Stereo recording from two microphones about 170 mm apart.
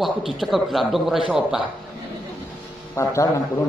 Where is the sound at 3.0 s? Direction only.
15° left (ahead or behind).